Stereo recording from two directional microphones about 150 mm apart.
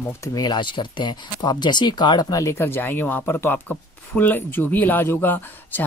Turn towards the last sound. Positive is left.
turn(degrees=15)  # may be behind; listen again after turning